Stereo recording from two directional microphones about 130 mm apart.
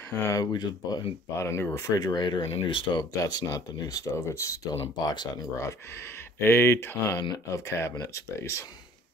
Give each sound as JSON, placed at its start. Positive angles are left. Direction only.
{"t": 0.2, "sound": "speech", "side_deg": 25}
{"t": 1.4, "sound": "speech", "side_deg": 20}
{"t": 3.2, "sound": "speech", "side_deg": 30}
{"t": 5.0, "sound": "speech", "side_deg": 35}
{"t": 6.4, "sound": "speech", "side_deg": 20}